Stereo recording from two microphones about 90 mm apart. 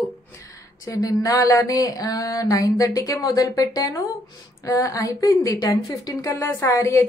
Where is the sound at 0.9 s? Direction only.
40° left (ahead or behind).